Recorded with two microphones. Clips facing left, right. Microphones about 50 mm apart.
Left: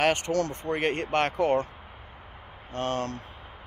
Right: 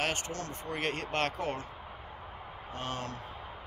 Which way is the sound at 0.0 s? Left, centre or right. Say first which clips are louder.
Left 10 dB; left.